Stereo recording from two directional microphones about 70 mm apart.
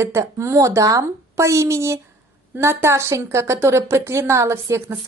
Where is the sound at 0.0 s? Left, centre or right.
Right.